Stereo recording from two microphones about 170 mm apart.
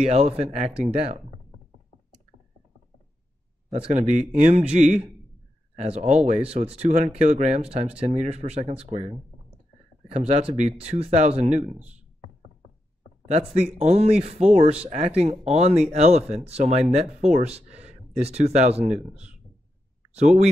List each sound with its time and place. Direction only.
0.0 s speech: 35° right (ahead or behind)
3.7 s speech: 40° right (ahead or behind)
10.1 s speech: 40° right (ahead or behind)
13.7 s speech: 35° right (ahead or behind)